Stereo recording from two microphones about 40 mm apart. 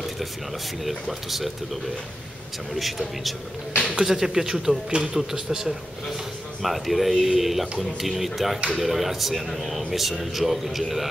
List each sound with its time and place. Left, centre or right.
0.8 s speech: centre
6.6 s speech: centre